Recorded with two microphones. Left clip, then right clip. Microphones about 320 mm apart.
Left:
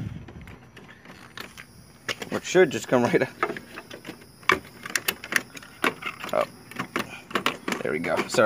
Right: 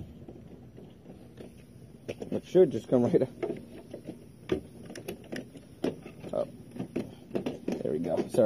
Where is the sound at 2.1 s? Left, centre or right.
Left.